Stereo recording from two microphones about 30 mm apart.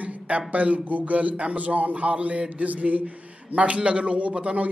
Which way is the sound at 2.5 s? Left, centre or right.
Right.